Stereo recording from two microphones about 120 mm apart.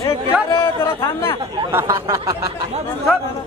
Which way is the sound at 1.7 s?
20° right (ahead or behind).